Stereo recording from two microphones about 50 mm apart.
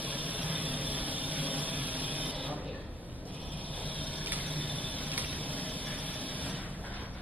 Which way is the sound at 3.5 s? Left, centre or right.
Left.